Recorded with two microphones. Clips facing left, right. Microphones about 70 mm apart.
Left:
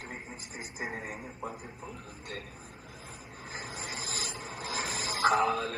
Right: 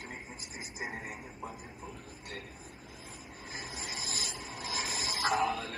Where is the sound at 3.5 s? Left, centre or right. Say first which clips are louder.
Left 2 dB; left.